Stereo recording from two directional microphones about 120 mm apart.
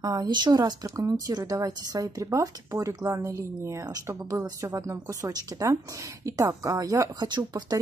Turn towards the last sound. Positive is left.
turn(degrees=-35)  # may be behind; listen again after turning